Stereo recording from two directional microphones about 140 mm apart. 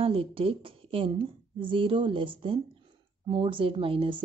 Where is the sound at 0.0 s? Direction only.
40° right (ahead or behind).